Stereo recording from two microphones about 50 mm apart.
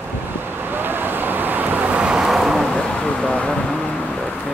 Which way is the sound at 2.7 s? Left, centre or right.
Left.